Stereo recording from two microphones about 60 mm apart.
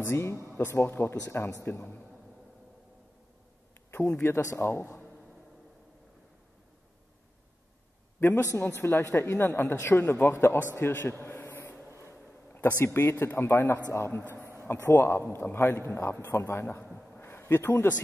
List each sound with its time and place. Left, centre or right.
0.0 s speech: left
1.1 s speech: left
1.4 s speech: left
3.9 s speech: left
8.2 s a man's voice: left
10.9 s speech: left
12.6 s speech: left
14.4 s a sound: right
14.7 s speech: left
17.2 s a sound: left